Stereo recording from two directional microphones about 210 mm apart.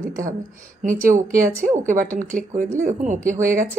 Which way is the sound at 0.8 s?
35° right (ahead or behind).